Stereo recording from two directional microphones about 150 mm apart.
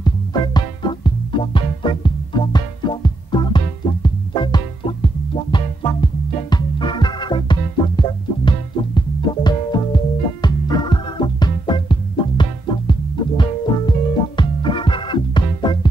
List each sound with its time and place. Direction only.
0.0 s music: 30° left (ahead or behind)